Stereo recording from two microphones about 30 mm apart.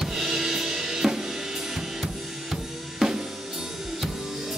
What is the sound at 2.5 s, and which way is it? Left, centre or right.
Drum kit, centre.